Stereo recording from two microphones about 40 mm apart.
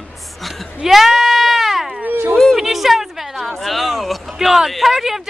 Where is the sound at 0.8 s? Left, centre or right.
Centre.